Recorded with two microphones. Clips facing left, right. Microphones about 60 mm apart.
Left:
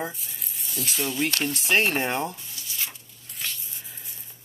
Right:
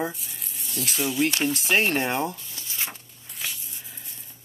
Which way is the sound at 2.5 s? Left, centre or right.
Right.